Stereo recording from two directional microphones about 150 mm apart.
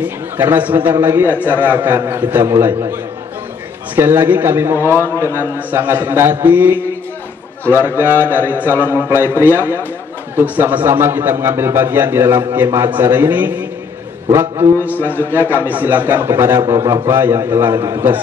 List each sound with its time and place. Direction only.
0.0 s a man's voice: 15° right (ahead or behind)
5.0 s a man's voice: 20° left (ahead or behind)
5.3 s a man's voice: 15° right (ahead or behind)
8.3 s a man's voice: 10° right (ahead or behind)
8.7 s a man's voice: 15° left (ahead or behind)
9.1 s a man's voice: 15° right (ahead or behind)